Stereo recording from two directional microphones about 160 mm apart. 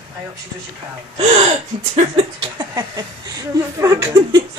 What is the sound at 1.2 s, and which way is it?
Gasp, 45° right (ahead or behind).